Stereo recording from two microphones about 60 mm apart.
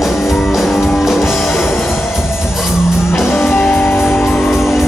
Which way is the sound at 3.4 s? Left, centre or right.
Left.